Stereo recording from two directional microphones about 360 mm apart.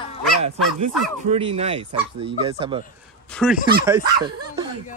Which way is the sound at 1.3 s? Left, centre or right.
Centre.